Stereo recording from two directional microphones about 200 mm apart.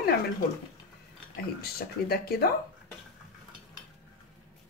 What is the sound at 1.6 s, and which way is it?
Speech, 50° left (ahead or behind).